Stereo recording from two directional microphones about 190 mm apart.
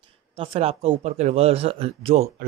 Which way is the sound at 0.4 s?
30° right (ahead or behind).